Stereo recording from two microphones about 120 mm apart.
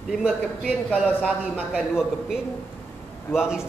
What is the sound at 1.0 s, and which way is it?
Speech, 15° left (ahead or behind).